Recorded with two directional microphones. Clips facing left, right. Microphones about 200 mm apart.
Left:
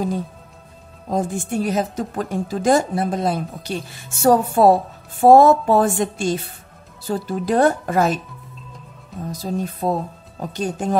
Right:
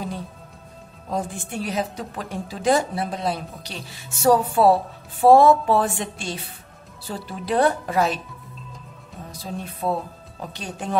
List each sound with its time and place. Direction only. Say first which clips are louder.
1.0 s a woman's voice: left 5 dB; 45° left (ahead or behind)
9.3 s a woman's voice: left 8 dB; 40° left (ahead or behind)